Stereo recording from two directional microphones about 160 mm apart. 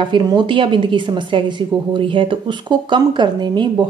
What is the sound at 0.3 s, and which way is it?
A woman's voice, 30° right (ahead or behind).